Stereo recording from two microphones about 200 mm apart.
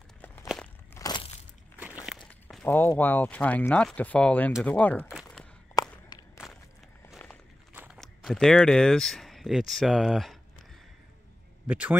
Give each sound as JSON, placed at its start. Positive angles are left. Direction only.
{"t": 0.9, "sound": "crushing", "side_deg": 20}
{"t": 2.0, "sound": "speech", "side_deg": 0}
{"t": 5.8, "sound": "walk", "side_deg": 20}
{"t": 7.7, "sound": "walk", "side_deg": -10}
{"t": 8.0, "sound": "speech", "side_deg": 0}
{"t": 11.6, "sound": "a man's voice", "side_deg": -5}